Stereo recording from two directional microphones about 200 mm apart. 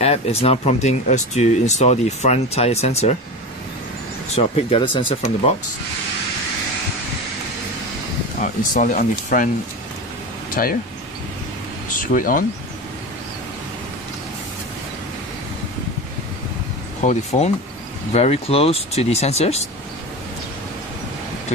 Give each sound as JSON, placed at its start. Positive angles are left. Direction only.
{"t": 0.0, "sound": "speech", "side_deg": 30}
{"t": 4.4, "sound": "speech", "side_deg": 30}
{"t": 8.4, "sound": "speech", "side_deg": 40}
{"t": 10.5, "sound": "speech", "side_deg": 45}
{"t": 11.9, "sound": "speech", "side_deg": 40}
{"t": 17.0, "sound": "speech", "side_deg": 35}